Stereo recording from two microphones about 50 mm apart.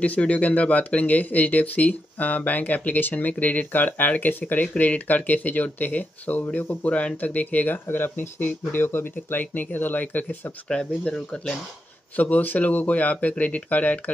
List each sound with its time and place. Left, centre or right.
0.0 s speech: left
7.8 s speech: left
10.7 s speech: centre
12.2 s speech: left